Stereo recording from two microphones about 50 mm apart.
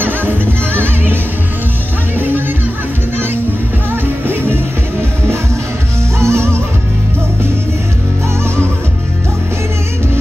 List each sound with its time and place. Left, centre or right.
0.0 s music: right
3.9 s music: right
6.1 s music: right